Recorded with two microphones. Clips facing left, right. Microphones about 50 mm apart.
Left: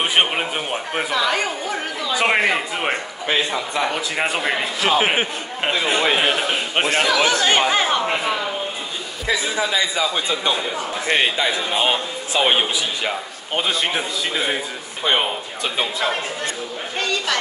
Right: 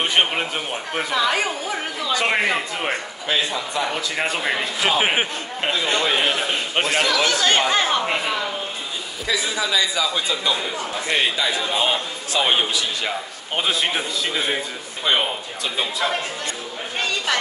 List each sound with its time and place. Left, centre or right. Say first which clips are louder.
0.0 s speech: left 1 dB; centre
1.1 s speech: even; centre
2.1 s speech: left 3 dB; centre
4.8 s a man's voice: left 2 dB; centre
5.6 s speech: left 2 dB; centre
9.3 s a man's voice: left 2 dB; left
13.6 s a man's voice: left 1 dB; centre
15.0 s a man's voice: left 1 dB; left